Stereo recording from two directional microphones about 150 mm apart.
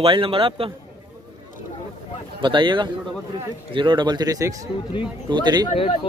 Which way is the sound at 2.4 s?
30° right (ahead or behind).